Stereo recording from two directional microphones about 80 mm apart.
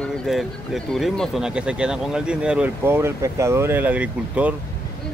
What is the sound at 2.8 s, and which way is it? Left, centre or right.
Speech, right.